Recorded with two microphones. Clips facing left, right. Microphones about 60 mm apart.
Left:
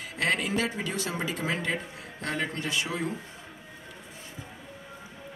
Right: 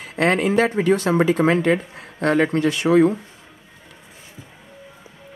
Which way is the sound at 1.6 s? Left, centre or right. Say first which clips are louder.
Right 12 dB; right.